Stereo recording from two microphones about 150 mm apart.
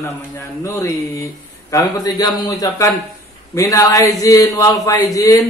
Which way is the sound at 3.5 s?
20° left (ahead or behind).